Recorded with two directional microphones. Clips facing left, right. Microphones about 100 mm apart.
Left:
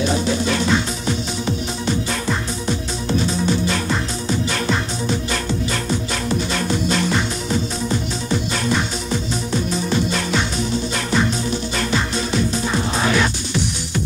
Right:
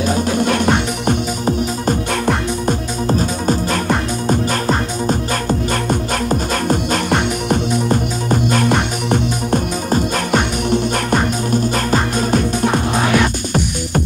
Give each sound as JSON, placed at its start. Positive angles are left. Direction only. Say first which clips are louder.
{"t": 0.1, "sound": "music", "louder": "right 3 dB", "side_deg": -50}